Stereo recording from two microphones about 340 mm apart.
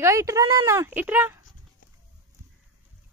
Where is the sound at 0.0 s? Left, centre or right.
Centre.